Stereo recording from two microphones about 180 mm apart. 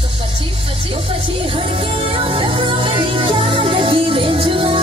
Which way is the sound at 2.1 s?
30° right (ahead or behind).